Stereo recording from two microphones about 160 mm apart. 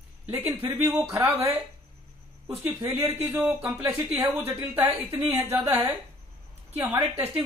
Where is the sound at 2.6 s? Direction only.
15° right (ahead or behind).